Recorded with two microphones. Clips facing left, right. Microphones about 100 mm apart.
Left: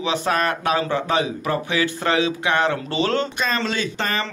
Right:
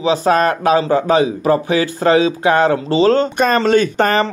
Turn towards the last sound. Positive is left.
turn(degrees=-50)  # may be behind; listen again after turning